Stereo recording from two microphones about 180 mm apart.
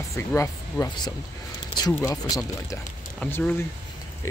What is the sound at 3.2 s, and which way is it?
Speech, 10° left (ahead or behind).